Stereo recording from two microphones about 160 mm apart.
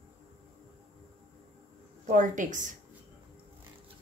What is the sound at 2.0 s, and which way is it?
Speech, 50° right (ahead or behind).